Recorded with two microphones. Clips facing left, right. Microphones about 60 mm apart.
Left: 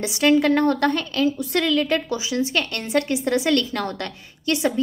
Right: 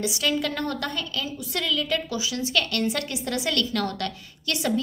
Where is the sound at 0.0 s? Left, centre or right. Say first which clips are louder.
Left 8 dB; left.